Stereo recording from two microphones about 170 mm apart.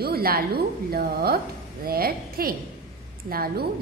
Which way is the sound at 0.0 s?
60° right (ahead or behind).